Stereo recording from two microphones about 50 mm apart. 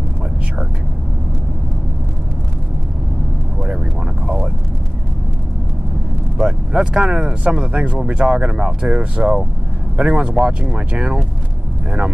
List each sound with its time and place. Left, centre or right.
6.3 s speech: centre